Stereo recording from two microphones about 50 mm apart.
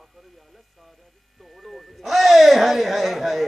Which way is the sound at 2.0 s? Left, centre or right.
Centre.